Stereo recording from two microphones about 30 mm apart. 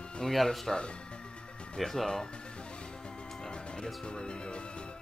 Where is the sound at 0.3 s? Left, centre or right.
Centre.